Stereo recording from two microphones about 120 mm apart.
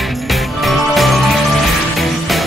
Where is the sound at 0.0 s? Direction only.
Centre (ahead or behind).